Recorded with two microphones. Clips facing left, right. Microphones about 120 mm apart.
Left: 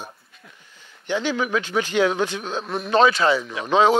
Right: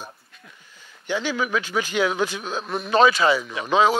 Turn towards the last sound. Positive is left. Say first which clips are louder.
# left 1 dB
turn(degrees=-5)  # may be behind; listen again after turning